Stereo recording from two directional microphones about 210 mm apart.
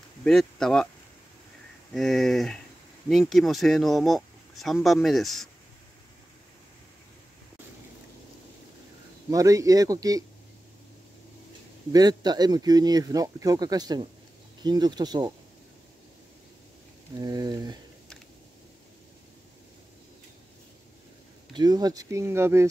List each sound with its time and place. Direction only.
0.2 s speech: centre (ahead or behind)
2.0 s speech: centre (ahead or behind)
9.3 s speech: 15° right (ahead or behind)
11.9 s speech: 20° right (ahead or behind)
17.2 s speech: 20° right (ahead or behind)
21.5 s speech: 20° right (ahead or behind)